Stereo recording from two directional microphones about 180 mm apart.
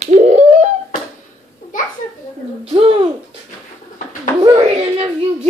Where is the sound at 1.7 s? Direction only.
45° left (ahead or behind).